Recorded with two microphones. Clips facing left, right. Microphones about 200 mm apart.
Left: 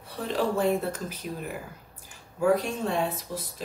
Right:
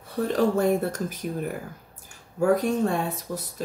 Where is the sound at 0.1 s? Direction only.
45° right (ahead or behind).